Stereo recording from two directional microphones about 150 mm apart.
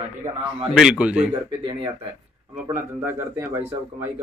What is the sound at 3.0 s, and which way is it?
Speech, 15° right (ahead or behind).